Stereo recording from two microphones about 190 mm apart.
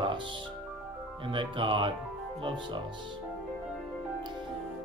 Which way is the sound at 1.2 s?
25° right (ahead or behind).